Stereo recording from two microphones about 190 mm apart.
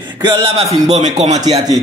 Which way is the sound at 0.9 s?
35° right (ahead or behind).